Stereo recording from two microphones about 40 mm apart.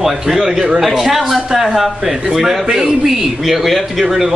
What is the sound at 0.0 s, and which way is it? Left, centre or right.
A man's voice, centre.